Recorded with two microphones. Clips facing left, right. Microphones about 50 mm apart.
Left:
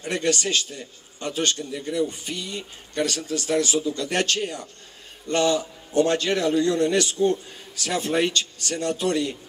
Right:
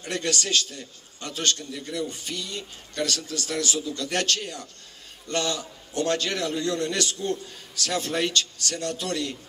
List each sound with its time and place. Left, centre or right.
0.0 s a man's voice: left